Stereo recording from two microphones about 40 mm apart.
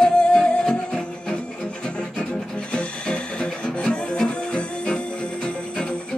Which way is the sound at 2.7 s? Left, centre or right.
Left.